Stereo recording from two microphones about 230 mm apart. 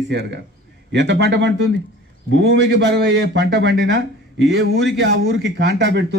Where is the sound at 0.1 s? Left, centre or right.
Right.